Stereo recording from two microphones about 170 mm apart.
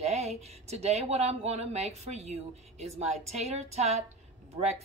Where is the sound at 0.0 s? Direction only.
40° right (ahead or behind).